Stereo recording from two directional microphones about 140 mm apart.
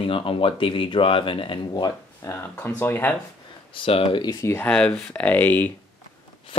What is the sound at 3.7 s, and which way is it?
Speech, 40° left (ahead or behind).